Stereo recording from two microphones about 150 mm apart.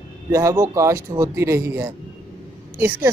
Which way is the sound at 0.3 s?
20° right (ahead or behind).